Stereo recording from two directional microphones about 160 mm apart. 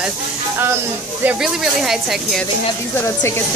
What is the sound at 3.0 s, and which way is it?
Speech, 15° left (ahead or behind).